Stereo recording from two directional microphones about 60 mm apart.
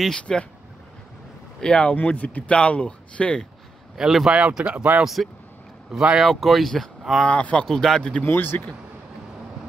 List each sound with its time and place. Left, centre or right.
0.0 s speech: centre
1.6 s speech: centre
3.9 s speech: centre; by 5.0 s right
5.0 s speech: centre
5.9 s speech: centre
6.2 s speech: centre
7.2 s speech: left
7.6 s speech: centre
8.2 s speech: left